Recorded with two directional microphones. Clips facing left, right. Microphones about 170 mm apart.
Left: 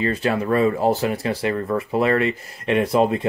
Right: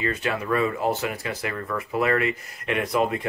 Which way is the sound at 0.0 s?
35° left (ahead or behind).